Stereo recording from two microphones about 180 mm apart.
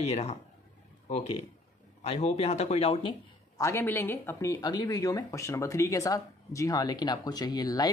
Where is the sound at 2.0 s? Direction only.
35° left (ahead or behind).